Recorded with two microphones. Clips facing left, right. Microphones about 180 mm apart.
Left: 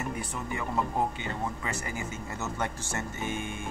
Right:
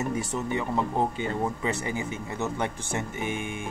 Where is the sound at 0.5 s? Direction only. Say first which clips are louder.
Right 2 dB; 20° right (ahead or behind).